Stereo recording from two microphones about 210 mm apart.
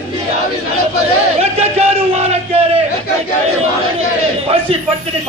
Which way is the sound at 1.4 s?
30° right (ahead or behind).